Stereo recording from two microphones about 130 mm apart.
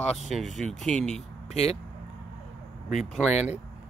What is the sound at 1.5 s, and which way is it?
Speech, 55° left (ahead or behind).